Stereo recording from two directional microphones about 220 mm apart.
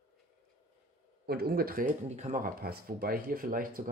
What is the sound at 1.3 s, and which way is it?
Speech, 45° right (ahead or behind).